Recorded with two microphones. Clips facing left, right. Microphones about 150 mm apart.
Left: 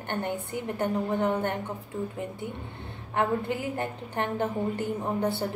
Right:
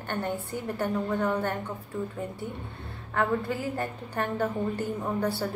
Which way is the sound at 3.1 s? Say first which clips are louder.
Even; 20° left (ahead or behind).